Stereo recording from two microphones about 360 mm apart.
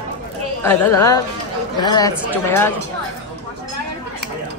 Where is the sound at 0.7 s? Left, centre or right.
Centre.